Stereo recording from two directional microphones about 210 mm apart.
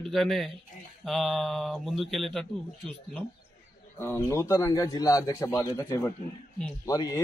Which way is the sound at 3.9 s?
10° left (ahead or behind).